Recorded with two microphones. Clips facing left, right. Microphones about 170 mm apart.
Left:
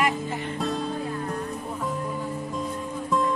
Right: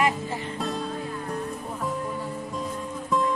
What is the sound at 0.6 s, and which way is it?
Music, centre (ahead or behind).